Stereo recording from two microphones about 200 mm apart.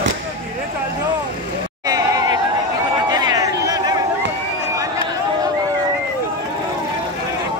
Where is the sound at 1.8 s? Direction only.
20° right (ahead or behind).